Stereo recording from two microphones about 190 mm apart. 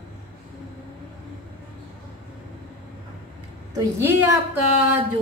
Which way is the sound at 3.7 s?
10° right (ahead or behind).